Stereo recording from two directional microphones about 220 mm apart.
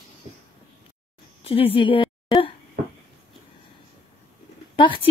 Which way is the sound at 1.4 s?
25° left (ahead or behind).